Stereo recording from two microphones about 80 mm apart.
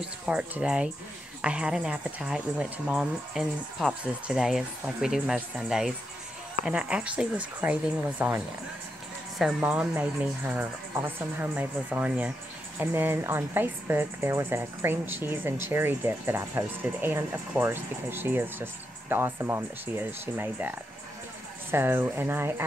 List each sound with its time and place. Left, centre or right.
0.0 s speech: centre
9.6 s speech: centre